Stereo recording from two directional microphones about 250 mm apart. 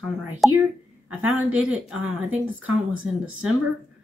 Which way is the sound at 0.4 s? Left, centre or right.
Centre.